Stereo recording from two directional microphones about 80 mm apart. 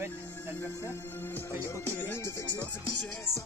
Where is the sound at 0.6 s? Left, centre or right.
Left.